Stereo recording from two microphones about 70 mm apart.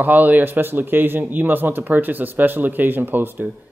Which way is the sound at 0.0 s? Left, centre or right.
Right.